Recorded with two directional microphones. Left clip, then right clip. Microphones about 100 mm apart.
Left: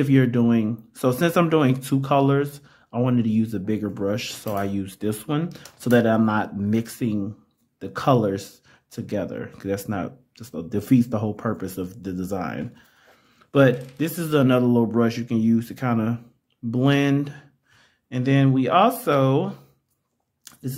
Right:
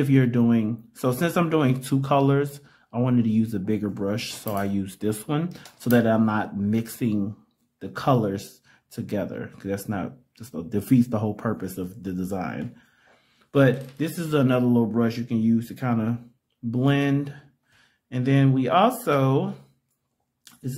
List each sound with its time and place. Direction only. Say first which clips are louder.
0.0 s speech: left 2 dB; 20° left (ahead or behind)
5.9 s speech: left 2 dB; 25° left (ahead or behind)
7.0 s speech: even; 5° left (ahead or behind)
7.8 s speech: left 3 dB; 25° left (ahead or behind)
8.9 s speech: left 1 dB; 15° left (ahead or behind)